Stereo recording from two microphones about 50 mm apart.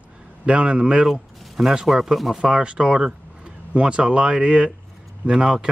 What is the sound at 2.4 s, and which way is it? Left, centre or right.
Speech, centre.